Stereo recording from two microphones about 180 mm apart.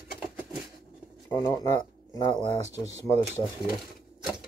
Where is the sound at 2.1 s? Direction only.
20° left (ahead or behind).